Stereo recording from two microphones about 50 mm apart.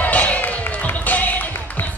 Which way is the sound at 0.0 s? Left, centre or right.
Left.